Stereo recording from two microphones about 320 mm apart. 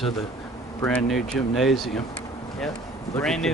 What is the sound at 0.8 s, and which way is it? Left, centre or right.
Speech, centre.